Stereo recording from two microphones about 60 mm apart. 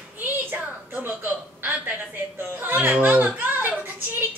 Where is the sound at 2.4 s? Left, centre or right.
Right.